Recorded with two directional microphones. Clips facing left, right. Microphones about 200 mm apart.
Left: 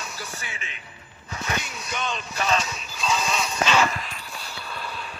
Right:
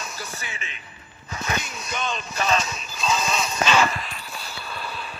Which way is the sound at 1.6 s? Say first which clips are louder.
Right 1 dB; 45° right (ahead or behind).